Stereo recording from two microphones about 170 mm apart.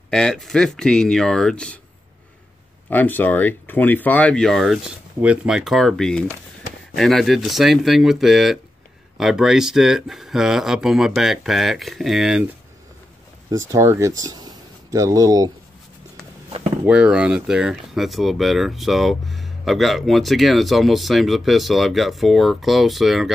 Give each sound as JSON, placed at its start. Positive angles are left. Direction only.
{"t": 0.1, "sound": "speech", "side_deg": 5}
{"t": 2.9, "sound": "speech", "side_deg": 10}
{"t": 13.5, "sound": "speech", "side_deg": -20}
{"t": 16.8, "sound": "speech", "side_deg": -5}